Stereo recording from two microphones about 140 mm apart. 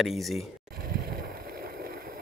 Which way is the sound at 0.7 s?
90° right.